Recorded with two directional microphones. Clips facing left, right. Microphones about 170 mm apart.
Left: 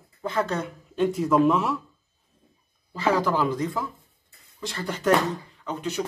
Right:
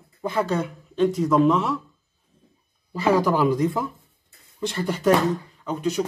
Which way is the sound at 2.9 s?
10° right (ahead or behind).